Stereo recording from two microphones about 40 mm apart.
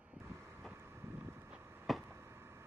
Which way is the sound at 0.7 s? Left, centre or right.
Right.